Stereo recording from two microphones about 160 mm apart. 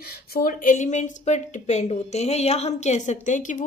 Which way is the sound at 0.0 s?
70° left (ahead or behind).